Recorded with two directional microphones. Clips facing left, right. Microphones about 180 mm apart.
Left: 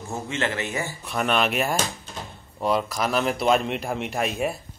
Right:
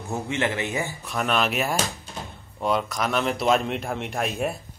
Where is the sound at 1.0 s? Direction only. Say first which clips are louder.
Left 2 dB; centre (ahead or behind).